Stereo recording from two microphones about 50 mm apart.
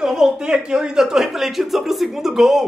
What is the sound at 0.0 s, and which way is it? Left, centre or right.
Speech, centre.